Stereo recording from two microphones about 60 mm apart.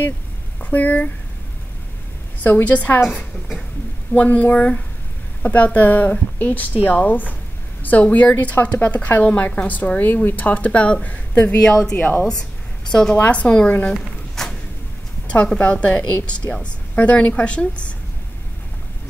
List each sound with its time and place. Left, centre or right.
0.6 s speech: left
2.4 s a woman's voice: left
4.1 s a woman's voice: left
12.0 s a woman's voice: left
14.3 s a sound: centre
15.2 s a woman's voice: centre